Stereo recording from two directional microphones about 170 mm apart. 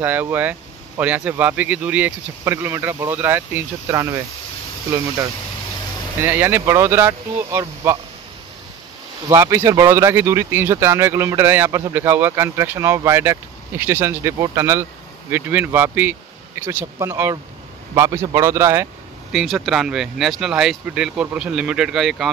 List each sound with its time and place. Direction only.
0.0 s speech: 10° right (ahead or behind)
6.2 s speech: 10° right (ahead or behind)
9.3 s speech: 15° right (ahead or behind)
19.3 s speech: centre (ahead or behind)